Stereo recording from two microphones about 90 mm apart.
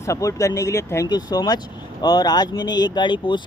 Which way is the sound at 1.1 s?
50° left (ahead or behind).